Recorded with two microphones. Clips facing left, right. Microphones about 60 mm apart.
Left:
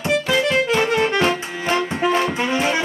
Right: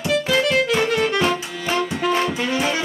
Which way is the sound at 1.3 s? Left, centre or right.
Left.